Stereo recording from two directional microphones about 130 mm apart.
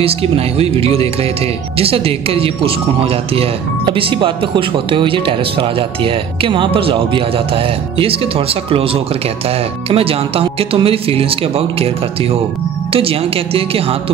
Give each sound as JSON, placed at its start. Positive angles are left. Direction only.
{"t": 0.0, "sound": "speech", "side_deg": -50}